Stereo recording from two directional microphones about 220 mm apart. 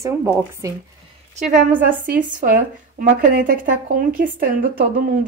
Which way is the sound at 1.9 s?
10° right (ahead or behind).